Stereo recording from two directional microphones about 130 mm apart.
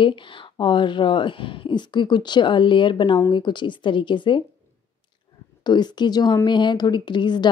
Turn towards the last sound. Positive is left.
turn(degrees=35)  # may be behind; listen again after turning